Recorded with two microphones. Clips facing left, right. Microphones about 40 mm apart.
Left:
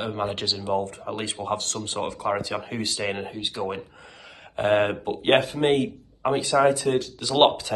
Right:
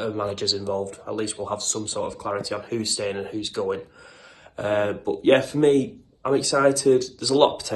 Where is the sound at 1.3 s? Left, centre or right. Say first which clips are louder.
Left 1 dB; left.